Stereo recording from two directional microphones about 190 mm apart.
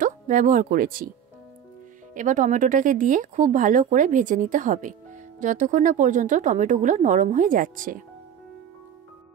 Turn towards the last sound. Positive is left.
turn(degrees=-45)  # may be behind; listen again after turning